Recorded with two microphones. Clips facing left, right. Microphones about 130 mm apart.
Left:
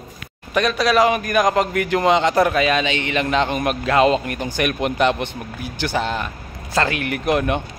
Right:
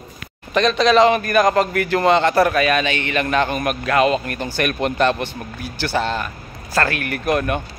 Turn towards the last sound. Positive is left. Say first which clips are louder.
# even
turn(degrees=20)  # may be behind; listen again after turning